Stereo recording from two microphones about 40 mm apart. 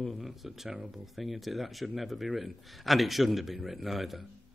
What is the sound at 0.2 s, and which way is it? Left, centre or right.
A man's voice, centre.